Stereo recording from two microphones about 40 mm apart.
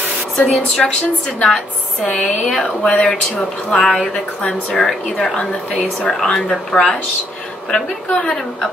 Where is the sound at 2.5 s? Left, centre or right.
Centre.